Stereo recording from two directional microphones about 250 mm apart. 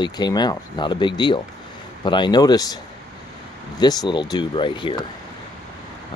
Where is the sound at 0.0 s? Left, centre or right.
Centre.